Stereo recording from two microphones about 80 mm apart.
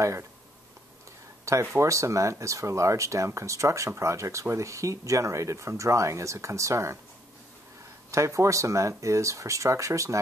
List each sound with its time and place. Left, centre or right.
0.0 s speech: right
1.4 s speech: right
8.1 s speech: right